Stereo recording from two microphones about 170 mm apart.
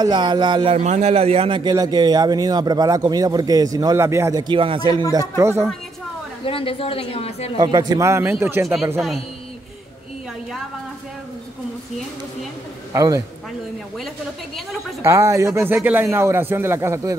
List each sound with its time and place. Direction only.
0.0 s speech: 25° right (ahead or behind)
0.7 s speech: 40° right (ahead or behind)
5.1 s speech: 20° right (ahead or behind)
6.4 s a woman's voice: 30° left (ahead or behind)
7.5 s speech: 20° right (ahead or behind)
12.9 s speech: 20° right (ahead or behind)
15.0 s speech: 15° right (ahead or behind)